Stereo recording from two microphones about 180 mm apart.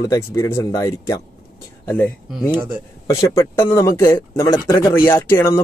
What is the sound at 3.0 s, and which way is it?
Speech, 15° left (ahead or behind).